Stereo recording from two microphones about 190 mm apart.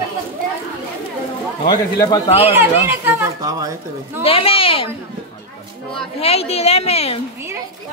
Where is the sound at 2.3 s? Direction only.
30° left (ahead or behind).